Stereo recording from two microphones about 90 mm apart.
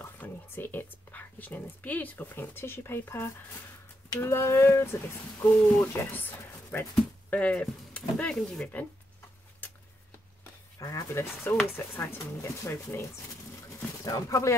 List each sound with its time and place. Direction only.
0.0 s speech: 20° left (ahead or behind)
10.8 s speech: 40° left (ahead or behind)
11.7 s speech: 25° left (ahead or behind)
14.0 s speech: 40° left (ahead or behind)